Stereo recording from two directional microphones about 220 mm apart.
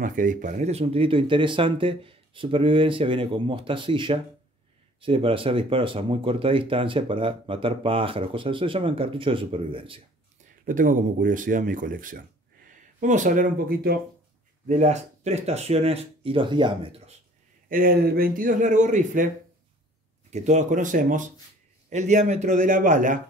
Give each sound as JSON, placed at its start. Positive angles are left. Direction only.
{"t": 0.0, "sound": "speech", "side_deg": -35}
{"t": 10.6, "sound": "speech", "side_deg": -35}
{"t": 17.6, "sound": "speech", "side_deg": -40}